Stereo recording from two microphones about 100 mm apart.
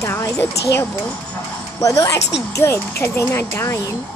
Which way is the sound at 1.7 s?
35° left (ahead or behind).